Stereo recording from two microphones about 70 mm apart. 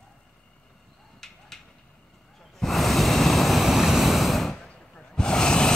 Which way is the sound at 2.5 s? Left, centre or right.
Centre.